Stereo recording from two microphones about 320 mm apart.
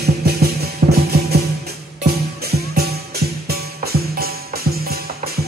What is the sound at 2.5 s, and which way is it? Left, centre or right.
Music, right.